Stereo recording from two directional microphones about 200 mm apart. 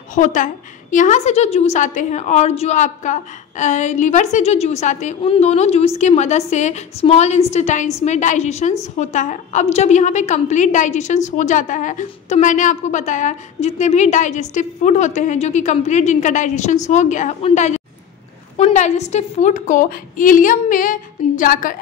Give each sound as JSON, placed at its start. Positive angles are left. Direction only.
{"t": 0.1, "sound": "a woman's voice", "side_deg": 40}